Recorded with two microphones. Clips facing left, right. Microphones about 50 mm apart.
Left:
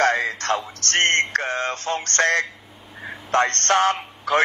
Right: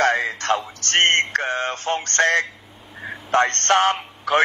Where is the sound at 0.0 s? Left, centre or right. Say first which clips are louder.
Even; centre.